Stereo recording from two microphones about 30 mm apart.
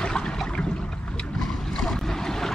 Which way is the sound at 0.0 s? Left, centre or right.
Left.